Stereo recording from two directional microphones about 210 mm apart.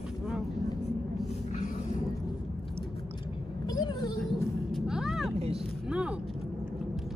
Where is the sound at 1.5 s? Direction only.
35° left (ahead or behind).